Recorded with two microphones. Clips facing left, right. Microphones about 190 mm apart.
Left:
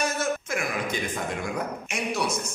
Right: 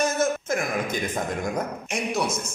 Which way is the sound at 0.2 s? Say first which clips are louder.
Right 4 dB; 45° right (ahead or behind).